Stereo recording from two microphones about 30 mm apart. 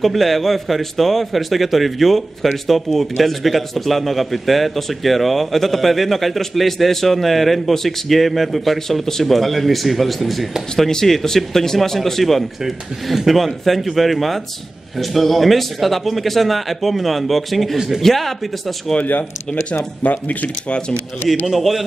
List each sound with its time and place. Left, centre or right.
0.0 s a man's voice: centre
8.8 s a man's voice: centre
11.2 s a man's voice: centre
12.6 s speech: centre
13.7 s a man's voice: centre
17.7 s speech: centre
18.0 s a man's voice: centre
20.0 s speech: left
21.5 s speech: centre